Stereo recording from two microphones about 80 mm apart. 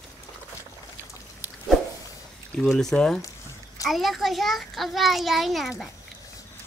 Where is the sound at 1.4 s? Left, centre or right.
Right.